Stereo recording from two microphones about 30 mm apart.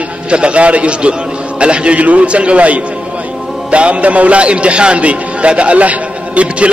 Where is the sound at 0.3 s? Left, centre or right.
Right.